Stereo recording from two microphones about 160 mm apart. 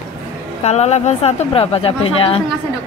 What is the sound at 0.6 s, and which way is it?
Speech, 45° left (ahead or behind).